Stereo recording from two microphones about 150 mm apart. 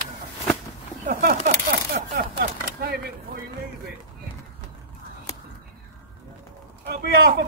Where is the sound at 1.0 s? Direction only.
65° right (ahead or behind); by 3.0 s 90° right.